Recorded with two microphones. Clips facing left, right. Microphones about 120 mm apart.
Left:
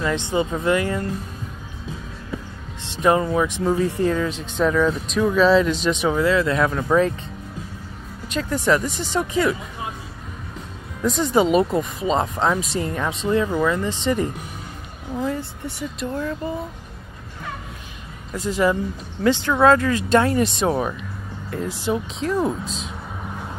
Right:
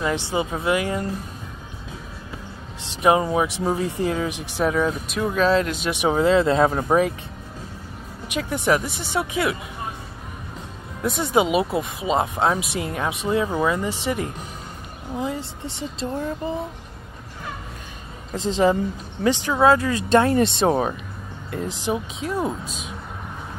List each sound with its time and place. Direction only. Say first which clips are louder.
0.3 s speech: left 4 dB; 10° right (ahead or behind)
3.0 s speech: even; 15° right (ahead or behind)
5.9 s speech: right 4 dB; 25° right (ahead or behind)
8.3 s speech: left 1 dB; 10° right (ahead or behind)
11.0 s speech: left 2 dB; 5° right (ahead or behind)
15.1 s speech: left 2 dB; 20° right (ahead or behind)
18.3 s speech: right 1 dB; 25° right (ahead or behind)
19.8 s speech: even; 30° right (ahead or behind)
21.9 s speech: left 5 dB; 10° right (ahead or behind)